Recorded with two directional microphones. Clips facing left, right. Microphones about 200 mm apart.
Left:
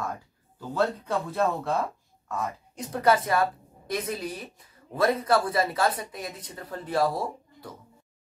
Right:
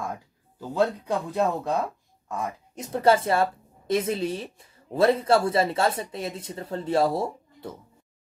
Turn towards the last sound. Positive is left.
turn(degrees=-25)  # may be behind; listen again after turning